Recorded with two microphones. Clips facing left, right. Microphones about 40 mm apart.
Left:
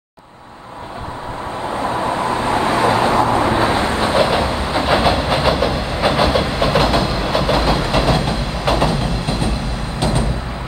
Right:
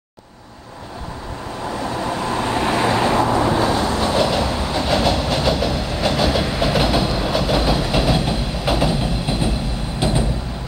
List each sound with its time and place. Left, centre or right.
1.7 s vehicle: left; by 7.0 s centre
7.0 s train: centre
8.8 s a sound: left